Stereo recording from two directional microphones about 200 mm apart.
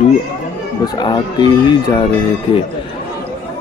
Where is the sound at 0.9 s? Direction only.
20° left (ahead or behind).